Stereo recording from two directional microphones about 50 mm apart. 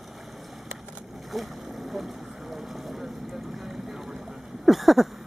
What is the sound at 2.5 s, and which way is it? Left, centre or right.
Boat, centre.